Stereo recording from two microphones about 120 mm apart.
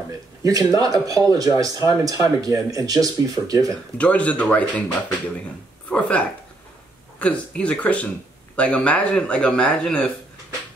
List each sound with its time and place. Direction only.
0.4 s speech: 30° right (ahead or behind)
4.0 s speech: 10° left (ahead or behind)
5.9 s speech: 10° left (ahead or behind)